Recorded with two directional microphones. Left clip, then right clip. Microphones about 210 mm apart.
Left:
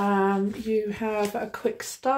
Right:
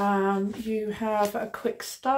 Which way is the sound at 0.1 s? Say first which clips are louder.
Left 2 dB; 15° right (ahead or behind).